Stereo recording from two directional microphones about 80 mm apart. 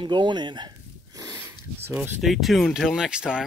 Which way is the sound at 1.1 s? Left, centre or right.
Right.